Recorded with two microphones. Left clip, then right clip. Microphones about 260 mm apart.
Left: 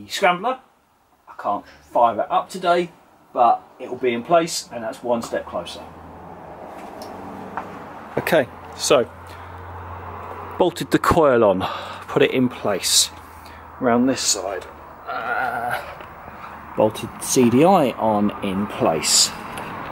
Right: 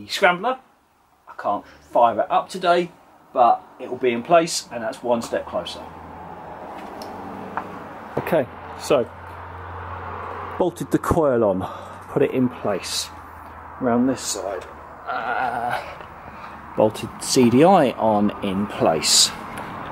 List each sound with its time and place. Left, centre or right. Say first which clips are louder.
0.2 s speech: even; centre
8.2 s speech: left 3 dB; centre
10.8 s speech: left 5 dB; centre
15.0 s a sound: even; centre
17.4 s speech: even; centre
17.9 s speech: right 1 dB; right
18.2 s speech: even; centre